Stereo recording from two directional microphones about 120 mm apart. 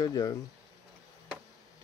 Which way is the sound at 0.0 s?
30° left (ahead or behind).